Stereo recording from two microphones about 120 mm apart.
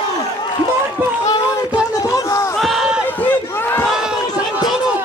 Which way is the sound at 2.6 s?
Centre (ahead or behind).